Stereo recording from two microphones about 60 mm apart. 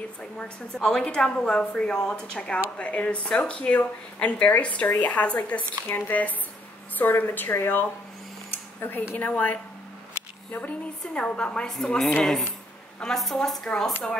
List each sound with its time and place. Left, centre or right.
0.2 s a woman's voice: centre
5.9 s a woman's voice: left
11.1 s a woman's voice: centre
11.7 s a woman's voice: centre
13.7 s speech: centre